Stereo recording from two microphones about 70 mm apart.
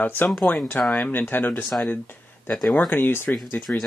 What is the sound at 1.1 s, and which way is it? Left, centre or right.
Speech, left.